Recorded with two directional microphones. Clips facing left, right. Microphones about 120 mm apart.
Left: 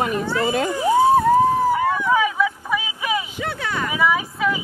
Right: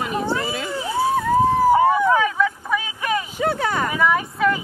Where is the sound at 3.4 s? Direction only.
40° right (ahead or behind).